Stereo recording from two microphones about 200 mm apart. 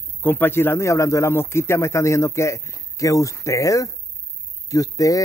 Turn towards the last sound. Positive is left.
turn(degrees=15)  # may be behind; listen again after turning